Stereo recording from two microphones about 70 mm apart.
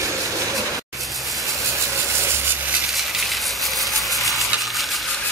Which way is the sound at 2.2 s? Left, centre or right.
Right.